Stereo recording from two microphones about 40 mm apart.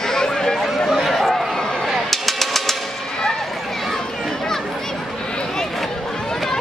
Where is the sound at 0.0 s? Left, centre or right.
Centre.